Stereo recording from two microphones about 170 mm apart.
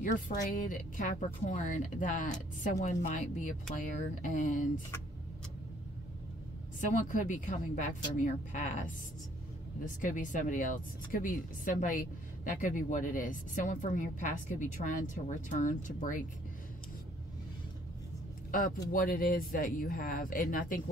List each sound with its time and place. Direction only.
0.5 s a woman's voice: 55° left (ahead or behind)
6.8 s a woman's voice: 45° left (ahead or behind)
9.9 s a woman's voice: 50° left (ahead or behind)
18.5 s speech: 55° left (ahead or behind)